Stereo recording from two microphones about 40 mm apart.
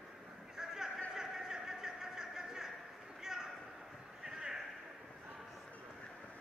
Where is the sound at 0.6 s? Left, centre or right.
Centre.